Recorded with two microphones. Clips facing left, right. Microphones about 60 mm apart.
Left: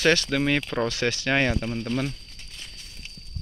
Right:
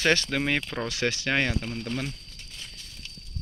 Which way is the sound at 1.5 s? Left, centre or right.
Left.